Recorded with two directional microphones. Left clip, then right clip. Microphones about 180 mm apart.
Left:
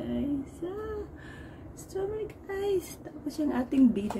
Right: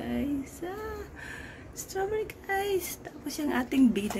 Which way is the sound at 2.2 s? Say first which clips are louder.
Right 2 dB; 5° right (ahead or behind).